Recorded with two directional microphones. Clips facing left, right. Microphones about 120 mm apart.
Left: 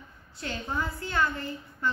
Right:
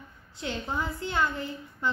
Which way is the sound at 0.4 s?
20° right (ahead or behind).